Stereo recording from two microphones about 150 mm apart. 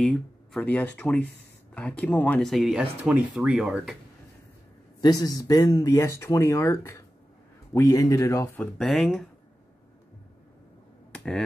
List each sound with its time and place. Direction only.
0.0 s speech: 5° left (ahead or behind)
5.0 s speech: 25° left (ahead or behind)
8.5 s speech: 5° left (ahead or behind)
11.1 s a sound: 5° left (ahead or behind)